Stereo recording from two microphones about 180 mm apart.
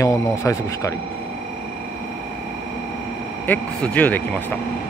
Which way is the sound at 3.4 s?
10° left (ahead or behind).